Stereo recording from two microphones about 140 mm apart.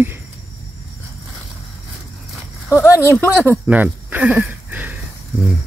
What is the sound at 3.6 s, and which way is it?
Speech, 10° right (ahead or behind).